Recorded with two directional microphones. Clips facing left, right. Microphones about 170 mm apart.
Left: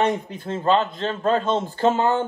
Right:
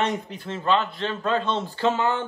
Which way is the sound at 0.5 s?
40° left (ahead or behind).